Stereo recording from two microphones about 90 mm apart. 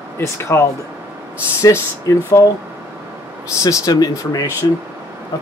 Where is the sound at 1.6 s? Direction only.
40° left (ahead or behind).